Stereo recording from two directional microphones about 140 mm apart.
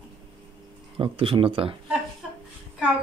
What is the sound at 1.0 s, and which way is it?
Speech, 40° right (ahead or behind).